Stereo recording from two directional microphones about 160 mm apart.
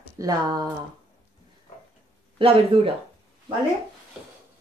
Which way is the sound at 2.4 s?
35° right (ahead or behind).